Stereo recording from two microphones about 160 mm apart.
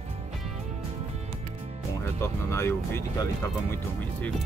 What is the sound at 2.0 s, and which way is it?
Speech, 15° left (ahead or behind).